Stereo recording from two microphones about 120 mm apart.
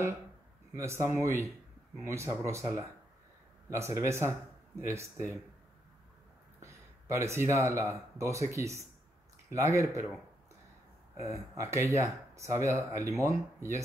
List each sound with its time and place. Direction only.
0.7 s speech: 25° right (ahead or behind)
6.6 s speech: 25° right (ahead or behind)
11.1 s speech: 25° right (ahead or behind)